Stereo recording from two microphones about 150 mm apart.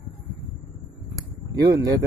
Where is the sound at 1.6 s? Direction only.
25° right (ahead or behind).